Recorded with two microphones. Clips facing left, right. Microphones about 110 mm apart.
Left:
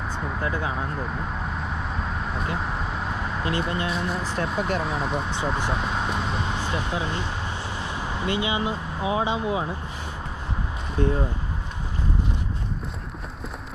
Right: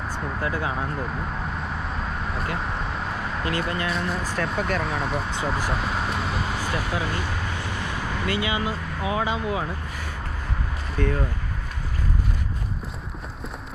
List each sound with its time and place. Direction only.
0.2 s a sound: centre (ahead or behind)
0.6 s vehicle: centre (ahead or behind)
3.9 s speech: centre (ahead or behind)
4.6 s speech: 25° left (ahead or behind)
4.8 s speech: centre (ahead or behind)
6.5 s speech: 25° left (ahead or behind)
11.0 s speech: 20° left (ahead or behind)